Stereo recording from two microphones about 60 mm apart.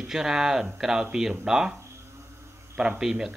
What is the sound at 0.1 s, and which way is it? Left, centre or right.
Speech, centre.